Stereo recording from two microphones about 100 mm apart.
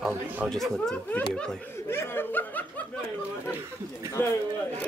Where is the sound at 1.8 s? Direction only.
25° left (ahead or behind).